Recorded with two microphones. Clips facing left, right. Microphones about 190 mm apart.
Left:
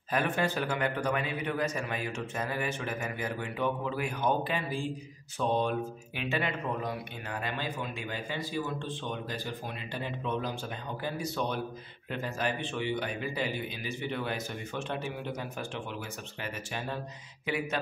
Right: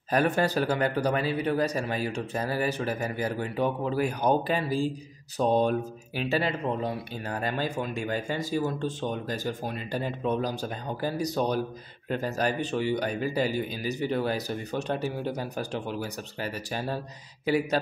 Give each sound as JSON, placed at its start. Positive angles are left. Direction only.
{"t": 0.1, "sound": "speech", "side_deg": -40}